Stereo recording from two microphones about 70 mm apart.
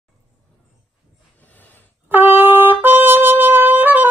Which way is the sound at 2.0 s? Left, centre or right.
Right.